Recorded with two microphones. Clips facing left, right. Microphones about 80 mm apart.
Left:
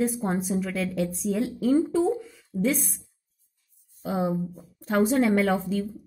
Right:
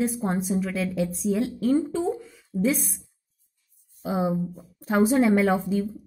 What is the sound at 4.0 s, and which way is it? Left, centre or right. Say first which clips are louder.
A woman's voice: right 1 dB; centre.